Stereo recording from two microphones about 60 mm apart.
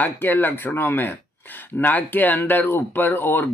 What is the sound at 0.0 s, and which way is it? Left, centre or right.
Speech, left.